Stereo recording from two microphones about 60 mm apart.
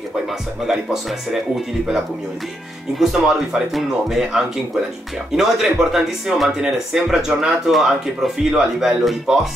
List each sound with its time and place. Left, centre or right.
3.0 s speech: centre